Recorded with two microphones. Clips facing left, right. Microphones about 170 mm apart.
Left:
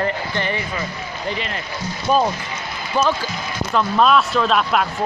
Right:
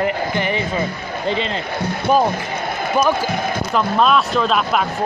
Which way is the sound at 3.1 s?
55° right (ahead or behind).